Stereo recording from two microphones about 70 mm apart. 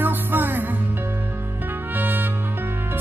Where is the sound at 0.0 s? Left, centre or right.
Right.